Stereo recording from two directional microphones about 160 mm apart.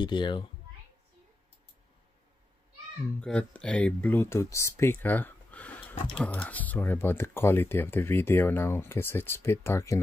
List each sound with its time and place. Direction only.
0.0 s a child's voice: 30° left (ahead or behind)
3.2 s speech: 5° left (ahead or behind)